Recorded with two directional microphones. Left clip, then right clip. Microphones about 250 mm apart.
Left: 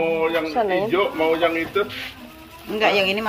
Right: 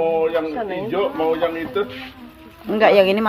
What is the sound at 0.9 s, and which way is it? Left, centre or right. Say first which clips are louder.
Speech: even; right.